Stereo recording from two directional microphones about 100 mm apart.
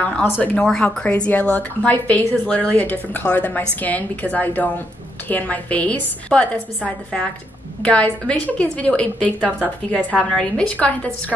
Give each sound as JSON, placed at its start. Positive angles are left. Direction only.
{"t": 0.0, "sound": "a sound", "side_deg": 10}
{"t": 0.6, "sound": "a woman's voice", "side_deg": 5}
{"t": 7.8, "sound": "a woman's voice", "side_deg": 10}